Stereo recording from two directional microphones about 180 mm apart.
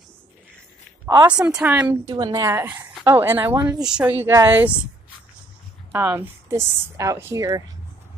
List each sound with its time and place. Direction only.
1.2 s speech: 5° right (ahead or behind)
2.1 s speech: 20° right (ahead or behind)
5.9 s speech: 10° right (ahead or behind)